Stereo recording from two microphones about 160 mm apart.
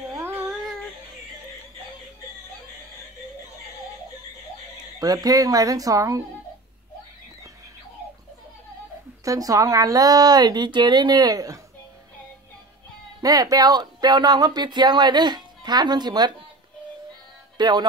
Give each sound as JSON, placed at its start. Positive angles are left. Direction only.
{"t": 0.1, "sound": "a sound", "side_deg": -15}
{"t": 5.0, "sound": "speech", "side_deg": -25}
{"t": 9.2, "sound": "speech", "side_deg": -20}
{"t": 13.2, "sound": "speech", "side_deg": -20}
{"t": 17.6, "sound": "music", "side_deg": -25}